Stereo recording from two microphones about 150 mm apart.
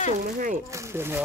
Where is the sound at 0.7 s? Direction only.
20° right (ahead or behind).